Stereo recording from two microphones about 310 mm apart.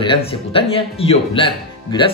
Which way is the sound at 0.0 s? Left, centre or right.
Centre.